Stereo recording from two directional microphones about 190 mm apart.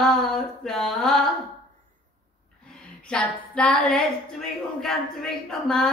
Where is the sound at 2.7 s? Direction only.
5° left (ahead or behind).